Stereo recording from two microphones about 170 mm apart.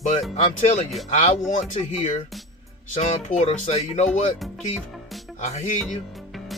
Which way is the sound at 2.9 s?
45° left (ahead or behind).